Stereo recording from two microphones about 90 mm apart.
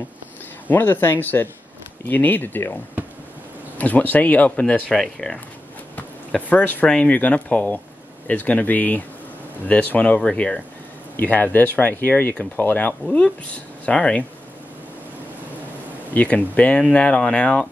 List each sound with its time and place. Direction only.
0.7 s speech: 20° left (ahead or behind); by 5.4 s 5° left (ahead or behind)
5.9 s speech: 15° left (ahead or behind)
16.1 s speech: 15° left (ahead or behind)